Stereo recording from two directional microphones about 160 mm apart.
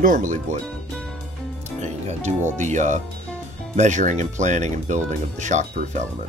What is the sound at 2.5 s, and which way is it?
Speech, 50° right (ahead or behind).